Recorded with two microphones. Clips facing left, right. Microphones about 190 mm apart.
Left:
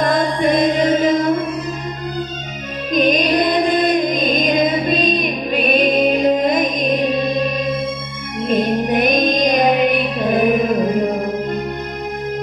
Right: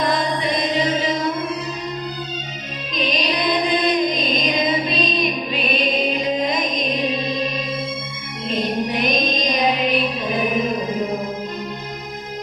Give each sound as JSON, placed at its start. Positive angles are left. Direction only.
{"t": 0.0, "sound": "chant", "side_deg": 50}
{"t": 2.9, "sound": "music", "side_deg": 50}